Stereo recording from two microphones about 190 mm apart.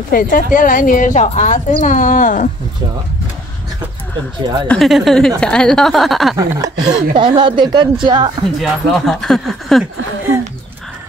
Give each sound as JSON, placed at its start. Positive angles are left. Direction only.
{"t": 0.1, "sound": "a woman's voice", "side_deg": 45}
{"t": 4.6, "sound": "speech", "side_deg": 0}
{"t": 6.3, "sound": "a woman's voice", "side_deg": -20}
{"t": 8.5, "sound": "speech", "side_deg": 0}